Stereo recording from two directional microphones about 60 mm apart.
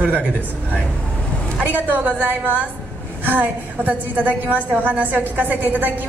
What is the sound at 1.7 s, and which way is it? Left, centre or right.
A woman's voice, right.